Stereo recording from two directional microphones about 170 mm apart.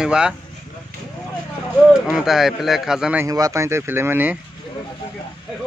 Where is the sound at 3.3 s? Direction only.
20° right (ahead or behind).